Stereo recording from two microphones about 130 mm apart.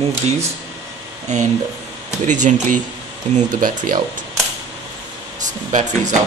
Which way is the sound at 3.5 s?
90° right.